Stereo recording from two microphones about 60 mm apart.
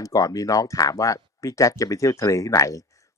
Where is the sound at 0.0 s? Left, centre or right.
Left.